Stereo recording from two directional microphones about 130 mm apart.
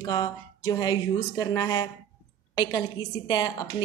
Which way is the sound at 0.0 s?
35° left (ahead or behind).